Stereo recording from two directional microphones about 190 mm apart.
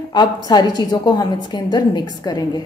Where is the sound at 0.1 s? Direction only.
20° left (ahead or behind).